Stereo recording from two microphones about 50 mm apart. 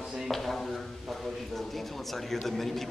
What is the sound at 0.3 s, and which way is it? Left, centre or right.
A man's voice, centre.